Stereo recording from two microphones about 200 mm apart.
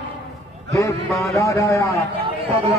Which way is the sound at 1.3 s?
15° left (ahead or behind).